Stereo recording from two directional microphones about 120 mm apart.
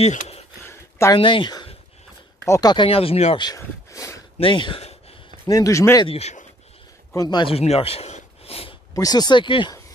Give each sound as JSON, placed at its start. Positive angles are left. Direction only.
{"t": 0.0, "sound": "speech", "side_deg": 60}
{"t": 0.7, "sound": "a sound", "side_deg": 20}
{"t": 1.1, "sound": "speech", "side_deg": 45}
{"t": 2.4, "sound": "speech", "side_deg": 25}
{"t": 2.7, "sound": "speech", "side_deg": 45}
{"t": 3.5, "sound": "speech", "side_deg": 25}
{"t": 4.4, "sound": "speech", "side_deg": 45}
{"t": 5.5, "sound": "speech", "side_deg": 25}
{"t": 6.0, "sound": "speech", "side_deg": 60}
{"t": 7.2, "sound": "speech", "side_deg": 40}
{"t": 7.5, "sound": "speech", "side_deg": 55}
{"t": 8.9, "sound": "speech", "side_deg": 30}